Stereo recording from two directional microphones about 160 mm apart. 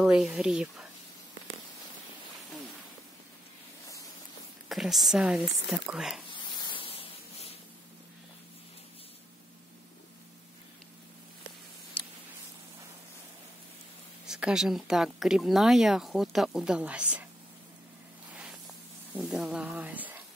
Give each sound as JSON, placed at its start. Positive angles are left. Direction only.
{"t": 0.0, "sound": "speech", "side_deg": -5}
{"t": 4.6, "sound": "speech", "side_deg": 0}
{"t": 6.3, "sound": "rub", "side_deg": 30}
{"t": 14.2, "sound": "speech", "side_deg": -5}
{"t": 18.3, "sound": "spray", "side_deg": -5}
{"t": 19.1, "sound": "speech", "side_deg": -5}